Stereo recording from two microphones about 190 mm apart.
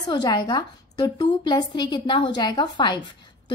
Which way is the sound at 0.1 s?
25° left (ahead or behind).